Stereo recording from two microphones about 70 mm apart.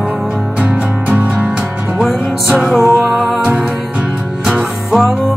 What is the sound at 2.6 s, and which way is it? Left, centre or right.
Music, centre.